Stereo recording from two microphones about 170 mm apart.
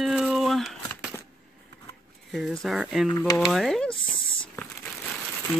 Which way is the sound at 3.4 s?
Centre (ahead or behind).